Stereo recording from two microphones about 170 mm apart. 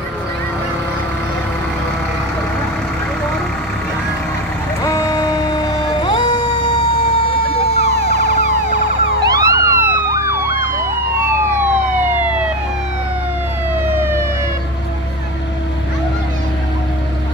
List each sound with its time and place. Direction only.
4.8 s a sound: 20° left (ahead or behind)
7.7 s emergency vehicle: 40° left (ahead or behind)
9.2 s police car: 20° right (ahead or behind)